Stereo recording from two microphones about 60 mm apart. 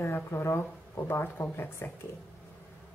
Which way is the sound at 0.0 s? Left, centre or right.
Left.